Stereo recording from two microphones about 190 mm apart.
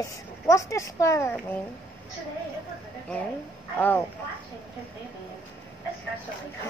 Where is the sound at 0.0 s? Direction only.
15° left (ahead or behind).